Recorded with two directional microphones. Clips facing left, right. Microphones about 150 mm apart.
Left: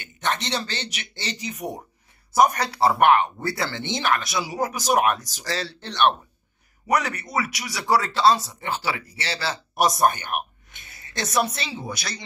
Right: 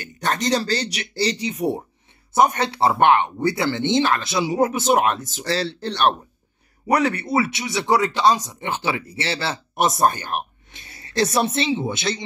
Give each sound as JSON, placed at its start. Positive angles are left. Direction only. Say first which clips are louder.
{"t": 0.0, "sound": "speech", "louder": "right 4 dB", "side_deg": -40}